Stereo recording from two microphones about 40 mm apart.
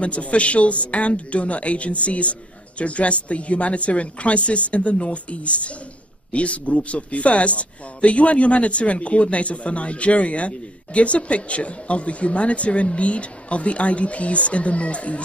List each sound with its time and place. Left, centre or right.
0.0 s speech: left